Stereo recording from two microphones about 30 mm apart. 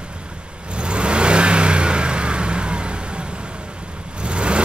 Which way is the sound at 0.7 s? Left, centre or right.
Right.